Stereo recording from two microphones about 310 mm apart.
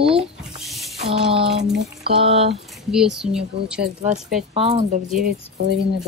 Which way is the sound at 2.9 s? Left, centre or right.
Centre.